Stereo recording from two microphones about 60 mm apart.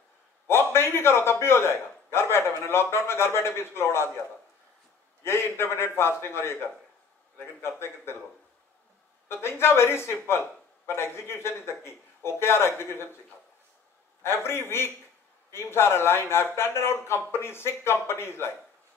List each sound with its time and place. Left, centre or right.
0.5 s a man's voice: left
5.2 s a man's voice: left
9.3 s a man's voice: left
14.2 s a man's voice: left